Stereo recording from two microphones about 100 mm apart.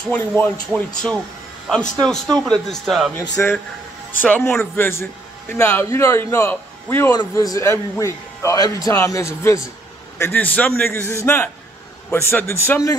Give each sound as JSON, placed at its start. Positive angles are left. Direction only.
{"t": 0.1, "sound": "a man's voice", "side_deg": 15}
{"t": 4.5, "sound": "a man's voice", "side_deg": 15}
{"t": 7.2, "sound": "a man's voice", "side_deg": 40}
{"t": 10.3, "sound": "a man's voice", "side_deg": 15}